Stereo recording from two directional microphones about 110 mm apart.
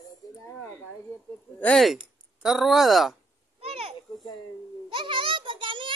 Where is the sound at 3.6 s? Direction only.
60° right (ahead or behind).